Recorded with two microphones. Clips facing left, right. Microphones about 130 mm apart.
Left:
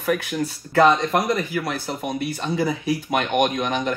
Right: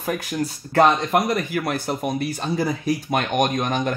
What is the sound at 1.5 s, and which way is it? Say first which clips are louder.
Speech: right 2 dB; 50° right (ahead or behind).